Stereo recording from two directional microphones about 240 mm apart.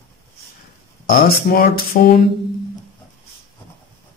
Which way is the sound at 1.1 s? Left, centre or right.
Left.